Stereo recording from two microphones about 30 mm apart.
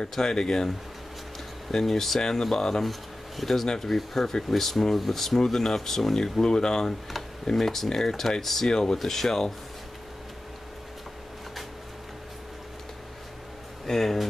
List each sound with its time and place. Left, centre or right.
0.2 s speech: left
1.7 s speech: centre
2.8 s speech: centre; by 7.0 s left
7.5 s speech: centre
13.8 s speech: centre